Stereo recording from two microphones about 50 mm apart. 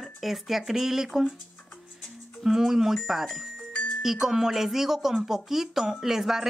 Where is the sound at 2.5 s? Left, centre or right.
Centre.